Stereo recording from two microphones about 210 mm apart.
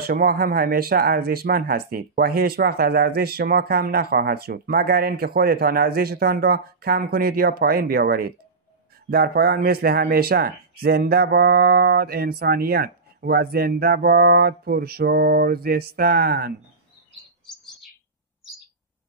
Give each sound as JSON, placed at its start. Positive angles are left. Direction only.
{"t": 0.0, "sound": "speech", "side_deg": -45}